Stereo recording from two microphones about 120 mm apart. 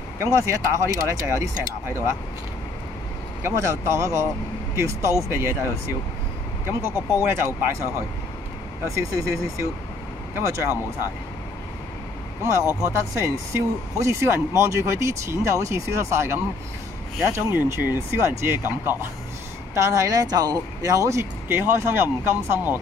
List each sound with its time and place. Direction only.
0.2 s speech: 25° right (ahead or behind)
3.4 s speech: 25° right (ahead or behind)
8.9 s speech: 25° right (ahead or behind)
12.4 s speech: 25° right (ahead or behind)